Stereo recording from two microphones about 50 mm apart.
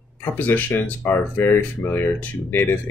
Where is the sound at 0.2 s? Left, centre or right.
Left.